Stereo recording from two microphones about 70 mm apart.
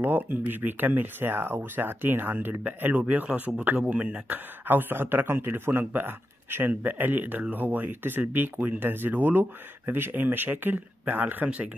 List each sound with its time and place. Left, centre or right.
0.0 s speech: right